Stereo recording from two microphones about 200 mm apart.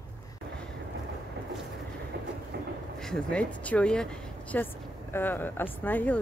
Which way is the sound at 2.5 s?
55° right (ahead or behind).